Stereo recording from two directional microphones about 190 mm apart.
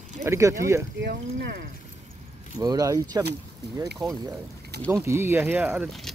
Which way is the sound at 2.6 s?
20° right (ahead or behind).